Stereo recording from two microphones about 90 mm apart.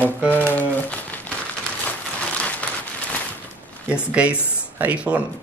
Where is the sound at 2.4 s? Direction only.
15° left (ahead or behind).